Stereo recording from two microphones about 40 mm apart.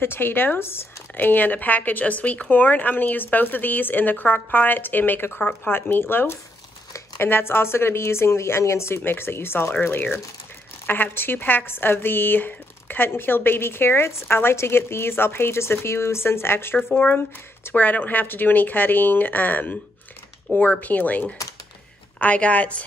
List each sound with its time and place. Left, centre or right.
0.0 s speech: left
1.1 s speech: left
5.7 s a woman's voice: left
10.9 s a woman's voice: left
14.3 s a woman's voice: left
16.7 s a woman's voice: left
22.2 s a woman's voice: left